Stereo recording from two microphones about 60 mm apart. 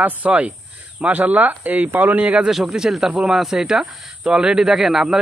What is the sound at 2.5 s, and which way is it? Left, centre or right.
Speech, centre.